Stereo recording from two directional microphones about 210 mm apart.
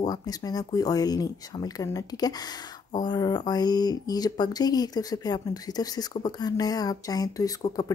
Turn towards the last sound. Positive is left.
turn(degrees=15)  # may be behind; listen again after turning